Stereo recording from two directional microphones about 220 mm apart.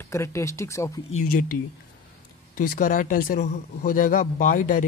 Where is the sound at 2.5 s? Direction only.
40° left (ahead or behind).